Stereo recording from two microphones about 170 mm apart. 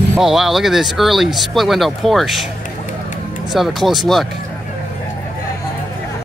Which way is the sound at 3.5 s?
Centre (ahead or behind).